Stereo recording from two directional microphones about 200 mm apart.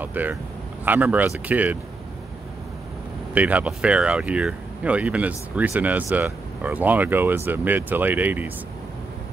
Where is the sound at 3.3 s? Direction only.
5° right (ahead or behind).